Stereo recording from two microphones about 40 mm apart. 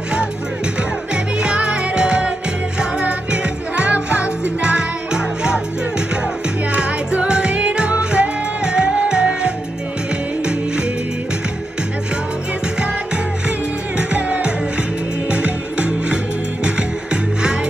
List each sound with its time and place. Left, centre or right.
1.1 s music: right
6.7 s music: right
13.9 s music: right